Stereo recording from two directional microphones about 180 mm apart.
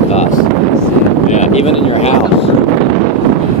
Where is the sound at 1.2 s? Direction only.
40° left (ahead or behind).